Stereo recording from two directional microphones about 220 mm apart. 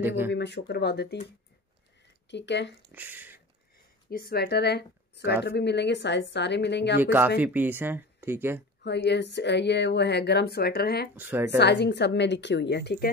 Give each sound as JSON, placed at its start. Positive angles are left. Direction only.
{"t": 0.3, "sound": "speech", "side_deg": 50}
{"t": 2.2, "sound": "speech", "side_deg": 55}
{"t": 2.9, "sound": "speech", "side_deg": -10}
{"t": 4.1, "sound": "speech", "side_deg": 45}
{"t": 7.0, "sound": "speech", "side_deg": -10}
{"t": 8.8, "sound": "speech", "side_deg": 50}
{"t": 11.1, "sound": "speech", "side_deg": -10}
{"t": 11.5, "sound": "speech", "side_deg": 50}